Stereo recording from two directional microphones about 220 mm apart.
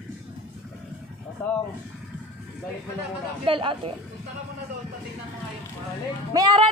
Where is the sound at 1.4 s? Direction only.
10° left (ahead or behind).